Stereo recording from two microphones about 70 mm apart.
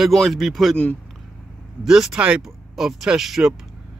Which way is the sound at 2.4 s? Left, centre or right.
Centre.